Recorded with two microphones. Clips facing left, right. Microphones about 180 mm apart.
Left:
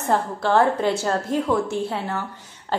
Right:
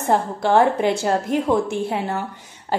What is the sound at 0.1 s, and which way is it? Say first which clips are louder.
A woman's voice: right 2 dB; 15° right (ahead or behind).